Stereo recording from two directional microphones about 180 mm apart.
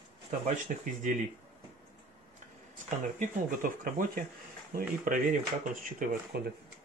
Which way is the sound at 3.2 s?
50° right (ahead or behind).